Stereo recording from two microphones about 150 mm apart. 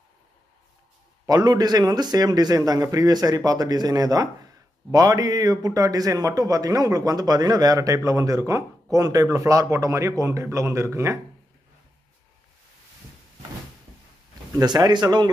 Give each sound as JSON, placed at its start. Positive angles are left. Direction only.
{"t": 1.2, "sound": "a man's voice", "side_deg": -25}
{"t": 14.5, "sound": "a man's voice", "side_deg": -25}